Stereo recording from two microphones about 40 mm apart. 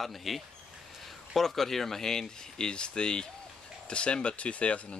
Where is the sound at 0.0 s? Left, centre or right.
Centre.